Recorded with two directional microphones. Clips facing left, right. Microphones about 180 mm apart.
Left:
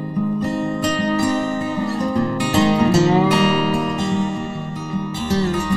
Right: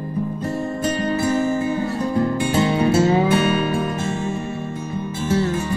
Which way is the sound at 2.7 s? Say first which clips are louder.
Left 2 dB; 70° left (ahead or behind).